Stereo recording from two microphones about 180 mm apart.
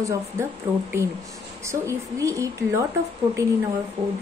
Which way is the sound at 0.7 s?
10° right (ahead or behind).